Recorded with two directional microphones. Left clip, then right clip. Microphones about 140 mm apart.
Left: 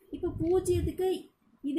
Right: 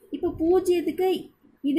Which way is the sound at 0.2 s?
20° right (ahead or behind).